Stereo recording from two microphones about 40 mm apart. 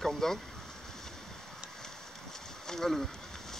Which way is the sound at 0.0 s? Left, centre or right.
Centre.